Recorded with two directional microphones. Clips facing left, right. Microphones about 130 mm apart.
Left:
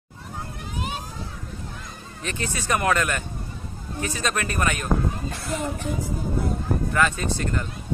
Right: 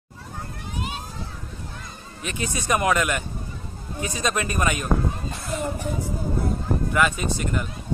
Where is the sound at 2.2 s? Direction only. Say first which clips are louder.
Right 1 dB; 15° right (ahead or behind).